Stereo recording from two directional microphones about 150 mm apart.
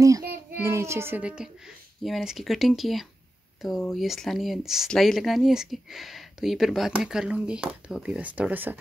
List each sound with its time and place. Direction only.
0.7 s speech: 20° right (ahead or behind)